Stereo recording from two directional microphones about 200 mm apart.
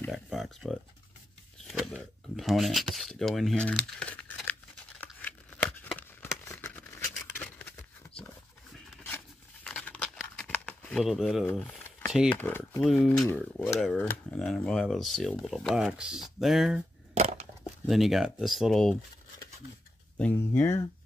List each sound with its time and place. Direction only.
0.1 s speech: centre (ahead or behind)
5.0 s a sound: 10° left (ahead or behind)
8.7 s tearing: 5° left (ahead or behind)
12.4 s speech: 10° left (ahead or behind)
17.1 s crushing: 35° right (ahead or behind)
17.8 s speech: centre (ahead or behind)
20.2 s speech: 10° left (ahead or behind)